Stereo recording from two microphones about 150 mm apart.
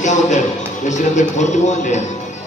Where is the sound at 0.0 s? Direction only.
55° left (ahead or behind).